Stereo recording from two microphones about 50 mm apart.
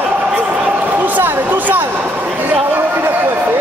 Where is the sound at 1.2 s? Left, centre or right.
Right.